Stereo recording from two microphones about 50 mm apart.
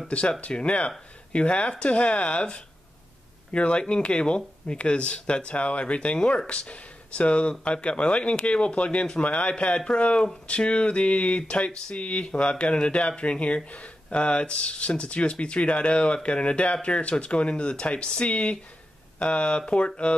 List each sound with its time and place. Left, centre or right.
0.4 s speech: left